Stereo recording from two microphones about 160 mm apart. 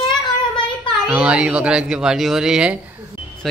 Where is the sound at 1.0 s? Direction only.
5° right (ahead or behind).